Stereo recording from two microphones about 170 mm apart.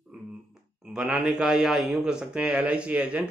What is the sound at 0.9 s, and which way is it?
A man's voice, 5° right (ahead or behind).